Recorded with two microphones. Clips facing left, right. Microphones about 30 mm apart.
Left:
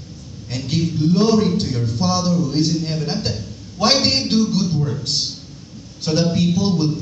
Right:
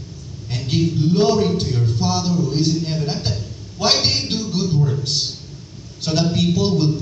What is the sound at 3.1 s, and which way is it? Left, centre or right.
A woman's voice, right.